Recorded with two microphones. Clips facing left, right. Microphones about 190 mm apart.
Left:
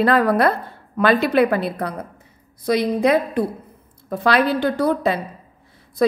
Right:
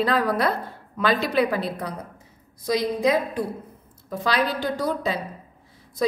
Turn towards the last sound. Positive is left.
turn(degrees=60)  # may be behind; listen again after turning